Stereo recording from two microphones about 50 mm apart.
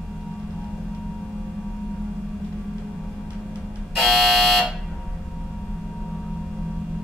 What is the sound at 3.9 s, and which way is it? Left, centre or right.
Alarm, centre.